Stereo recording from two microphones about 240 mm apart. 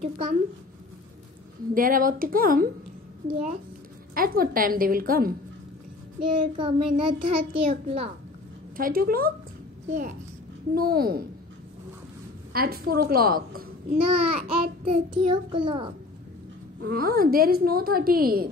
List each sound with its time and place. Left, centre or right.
0.0 s child singing: right
1.7 s a woman's voice: right
4.1 s a woman's voice: right
6.2 s child singing: centre
8.7 s a woman's voice: right
12.5 s a woman's voice: right
13.9 s child singing: right
16.8 s a woman's voice: right